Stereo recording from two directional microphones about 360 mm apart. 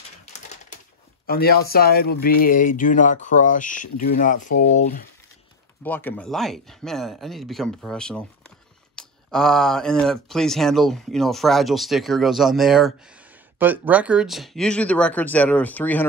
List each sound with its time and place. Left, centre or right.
0.2 s typewriter: centre
1.2 s speech: left
5.9 s speech: centre